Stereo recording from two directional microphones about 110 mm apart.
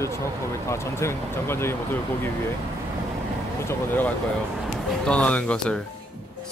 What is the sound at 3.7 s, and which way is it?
Speech, 15° left (ahead or behind).